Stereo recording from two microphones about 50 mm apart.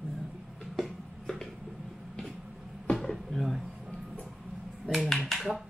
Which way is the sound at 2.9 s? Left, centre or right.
Centre.